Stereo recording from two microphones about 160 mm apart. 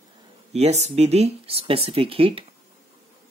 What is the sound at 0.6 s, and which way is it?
Speech, 45° right (ahead or behind).